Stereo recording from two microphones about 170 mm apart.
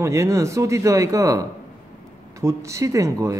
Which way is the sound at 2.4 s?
15° right (ahead or behind).